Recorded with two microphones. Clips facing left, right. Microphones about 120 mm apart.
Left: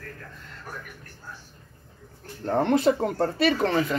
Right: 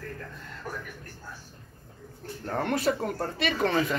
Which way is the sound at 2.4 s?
25° left (ahead or behind).